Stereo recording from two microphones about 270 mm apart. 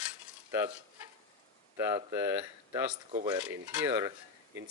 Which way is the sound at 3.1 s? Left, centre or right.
Centre.